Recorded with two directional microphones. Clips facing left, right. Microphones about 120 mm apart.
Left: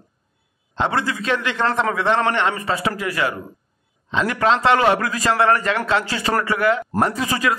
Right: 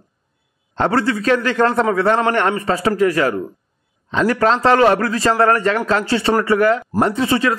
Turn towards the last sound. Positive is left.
turn(degrees=-30)  # may be behind; listen again after turning